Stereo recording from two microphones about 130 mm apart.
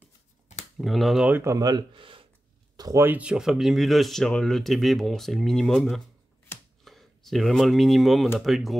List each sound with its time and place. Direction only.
0.7 s speech: centre (ahead or behind)
1.3 s speech: 20° right (ahead or behind); by 2.2 s 40° right (ahead or behind)
2.8 s speech: 25° right (ahead or behind)
3.1 s speech: 10° right (ahead or behind)